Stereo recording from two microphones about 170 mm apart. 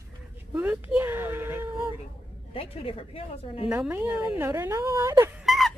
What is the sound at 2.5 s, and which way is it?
Speech, 35° left (ahead or behind).